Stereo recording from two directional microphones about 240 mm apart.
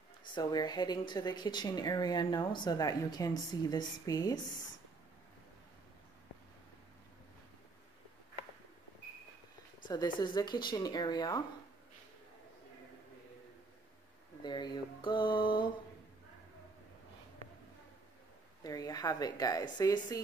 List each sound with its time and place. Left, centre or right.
0.3 s speech: centre
9.8 s speech: centre
14.4 s a sound: centre
18.6 s speech: centre